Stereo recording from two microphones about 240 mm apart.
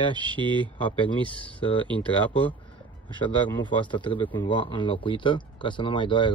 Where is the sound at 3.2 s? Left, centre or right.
Centre.